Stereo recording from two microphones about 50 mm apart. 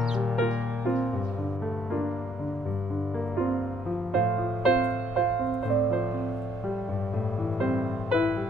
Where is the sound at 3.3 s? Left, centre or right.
Centre.